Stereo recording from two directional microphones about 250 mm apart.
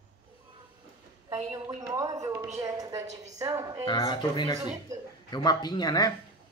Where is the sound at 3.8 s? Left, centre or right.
Centre.